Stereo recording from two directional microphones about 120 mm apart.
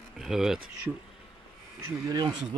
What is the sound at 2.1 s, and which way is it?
Speech, 35° right (ahead or behind).